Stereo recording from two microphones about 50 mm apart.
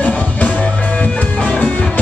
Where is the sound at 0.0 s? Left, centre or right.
Left.